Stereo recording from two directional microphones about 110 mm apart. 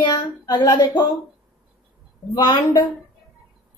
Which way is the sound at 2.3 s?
45° left (ahead or behind).